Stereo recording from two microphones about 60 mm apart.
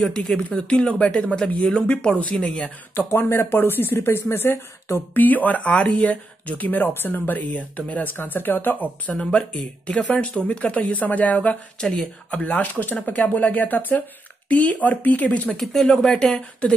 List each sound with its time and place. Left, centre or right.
0.4 s speech: centre
3.0 s speech: left
9.1 s speech: centre
11.8 s speech: centre
12.3 s speech: left
15.5 s speech: centre